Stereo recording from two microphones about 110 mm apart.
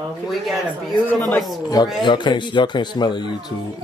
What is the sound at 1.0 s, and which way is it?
Speech, 15° left (ahead or behind).